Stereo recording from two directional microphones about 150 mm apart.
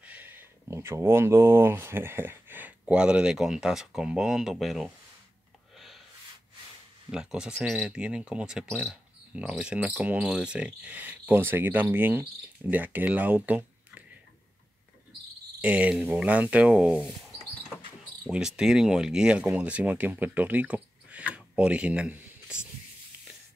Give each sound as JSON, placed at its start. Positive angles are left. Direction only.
{"t": 0.0, "sound": "speech", "side_deg": -10}
{"t": 7.1, "sound": "speech", "side_deg": -5}
{"t": 15.6, "sound": "speech", "side_deg": -10}
{"t": 18.3, "sound": "speech", "side_deg": -5}